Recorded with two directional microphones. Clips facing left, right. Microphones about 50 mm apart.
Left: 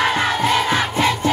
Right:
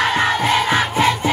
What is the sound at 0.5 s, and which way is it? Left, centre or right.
Crowd, centre.